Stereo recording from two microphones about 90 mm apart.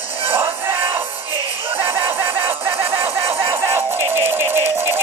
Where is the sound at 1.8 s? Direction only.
25° right (ahead or behind).